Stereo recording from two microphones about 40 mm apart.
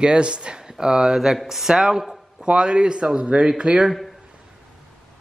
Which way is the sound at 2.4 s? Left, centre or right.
Right.